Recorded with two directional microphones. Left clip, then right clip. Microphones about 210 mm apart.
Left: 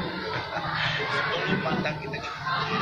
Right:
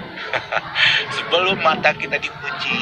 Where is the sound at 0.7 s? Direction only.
40° right (ahead or behind).